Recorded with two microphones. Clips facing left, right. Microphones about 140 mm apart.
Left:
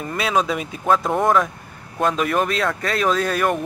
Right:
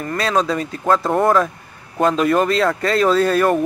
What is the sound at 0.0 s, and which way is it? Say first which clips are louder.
Speech: right 2 dB; 10° left (ahead or behind).